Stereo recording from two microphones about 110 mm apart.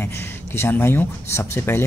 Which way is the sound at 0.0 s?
20° left (ahead or behind).